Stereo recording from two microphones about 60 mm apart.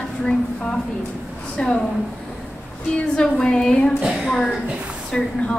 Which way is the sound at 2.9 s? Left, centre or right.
Centre.